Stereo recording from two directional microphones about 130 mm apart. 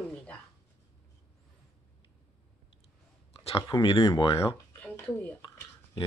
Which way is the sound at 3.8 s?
40° left (ahead or behind).